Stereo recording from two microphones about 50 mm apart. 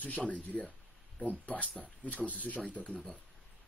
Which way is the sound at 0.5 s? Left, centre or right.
Centre.